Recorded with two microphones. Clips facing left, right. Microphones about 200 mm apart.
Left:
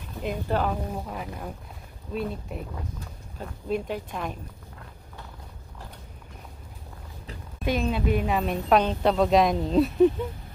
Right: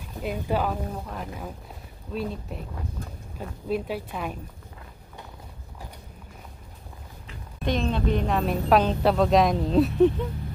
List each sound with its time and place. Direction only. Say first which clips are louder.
0.2 s a woman's voice: even; 5° right (ahead or behind)
1.0 s a woman's voice: even; 5° left (ahead or behind)
7.6 s a woman's voice: even; 5° left (ahead or behind)